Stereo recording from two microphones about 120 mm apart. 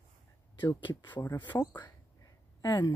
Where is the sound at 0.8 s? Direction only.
40° left (ahead or behind).